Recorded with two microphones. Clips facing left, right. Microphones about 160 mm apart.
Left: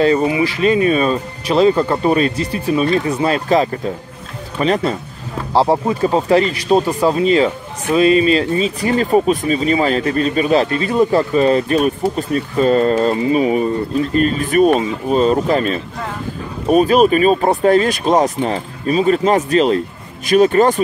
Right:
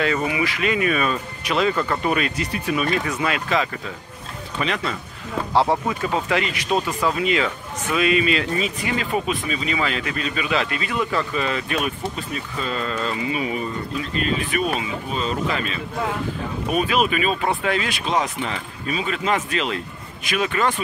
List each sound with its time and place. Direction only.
0.0 s speech: 30° left (ahead or behind)